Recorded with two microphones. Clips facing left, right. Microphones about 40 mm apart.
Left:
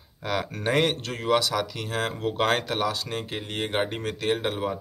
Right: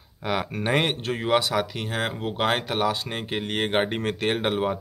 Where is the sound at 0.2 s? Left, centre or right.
Centre.